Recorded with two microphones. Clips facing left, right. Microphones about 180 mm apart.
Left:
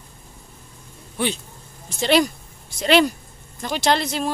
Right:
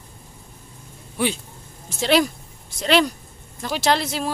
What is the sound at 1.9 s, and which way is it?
Speech, centre (ahead or behind).